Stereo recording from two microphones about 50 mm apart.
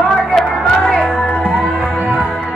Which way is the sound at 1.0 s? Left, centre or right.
Left.